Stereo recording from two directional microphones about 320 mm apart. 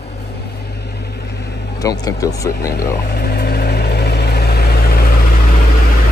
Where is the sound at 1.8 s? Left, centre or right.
Centre.